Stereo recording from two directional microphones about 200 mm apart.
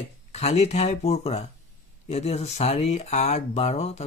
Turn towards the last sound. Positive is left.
turn(degrees=35)  # may be behind; listen again after turning